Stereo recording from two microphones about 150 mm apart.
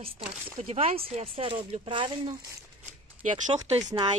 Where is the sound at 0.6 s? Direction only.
50° right (ahead or behind); by 2.4 s 30° right (ahead or behind).